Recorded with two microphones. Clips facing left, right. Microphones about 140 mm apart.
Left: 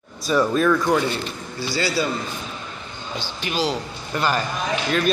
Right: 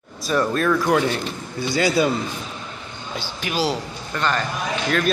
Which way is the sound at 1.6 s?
20° right (ahead or behind).